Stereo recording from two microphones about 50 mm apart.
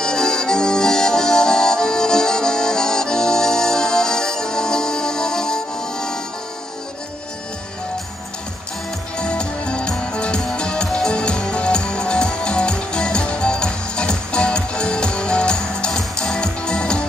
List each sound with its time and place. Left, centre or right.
0.0 s accordion: centre
9.2 s music: centre